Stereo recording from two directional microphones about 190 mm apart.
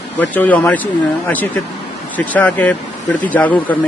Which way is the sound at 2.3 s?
10° left (ahead or behind).